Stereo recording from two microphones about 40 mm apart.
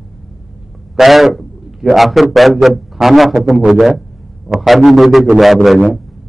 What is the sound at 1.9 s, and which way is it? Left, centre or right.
A man's voice, centre.